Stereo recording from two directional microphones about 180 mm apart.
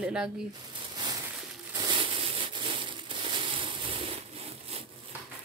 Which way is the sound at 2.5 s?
25° right (ahead or behind).